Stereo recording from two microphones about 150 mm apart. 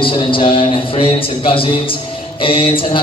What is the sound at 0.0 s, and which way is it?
A man's voice, 35° left (ahead or behind).